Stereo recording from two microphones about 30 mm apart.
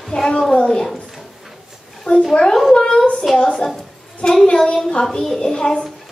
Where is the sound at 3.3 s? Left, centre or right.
Centre.